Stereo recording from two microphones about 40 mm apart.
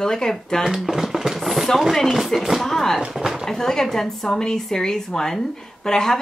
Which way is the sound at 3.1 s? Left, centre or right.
Centre.